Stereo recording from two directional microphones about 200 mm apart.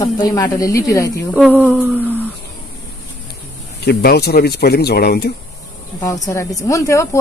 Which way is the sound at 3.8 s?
55° left (ahead or behind).